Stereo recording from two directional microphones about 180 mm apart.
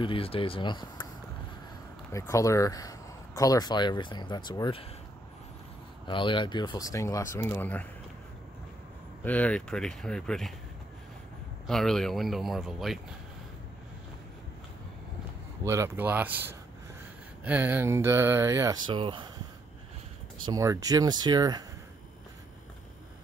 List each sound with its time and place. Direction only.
0.0 s speech: 30° left (ahead or behind)
2.1 s speech: 15° left (ahead or behind)
6.0 s speech: 25° left (ahead or behind); by 7.8 s 10° left (ahead or behind)
9.2 s speech: 10° left (ahead or behind)
11.6 s speech: centre (ahead or behind)
15.6 s speech: 15° right (ahead or behind)
20.4 s speech: 20° right (ahead or behind)